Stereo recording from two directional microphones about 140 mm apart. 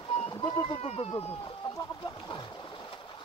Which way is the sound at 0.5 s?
40° left (ahead or behind).